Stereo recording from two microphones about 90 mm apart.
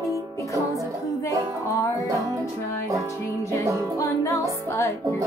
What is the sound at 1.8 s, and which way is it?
Music, 35° left (ahead or behind).